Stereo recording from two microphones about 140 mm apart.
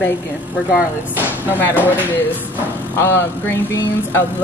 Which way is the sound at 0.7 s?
10° right (ahead or behind).